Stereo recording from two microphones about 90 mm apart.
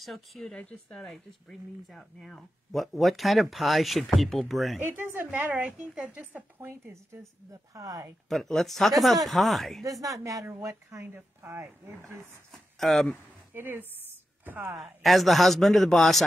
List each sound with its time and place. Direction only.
0.0 s speech: centre (ahead or behind)
4.7 s speech: 25° right (ahead or behind)
5.5 s a woman's voice: 10° right (ahead or behind)
7.7 s a woman's voice: 40° right (ahead or behind)
8.3 s speech: 5° left (ahead or behind)
9.8 s a woman's voice: 40° right (ahead or behind)
12.7 s speech: 5° left (ahead or behind)
13.5 s speech: 20° right (ahead or behind)
14.8 s speech: centre (ahead or behind)